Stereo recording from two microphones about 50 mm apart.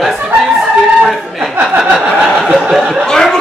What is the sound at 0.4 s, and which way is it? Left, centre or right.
Chicken, centre.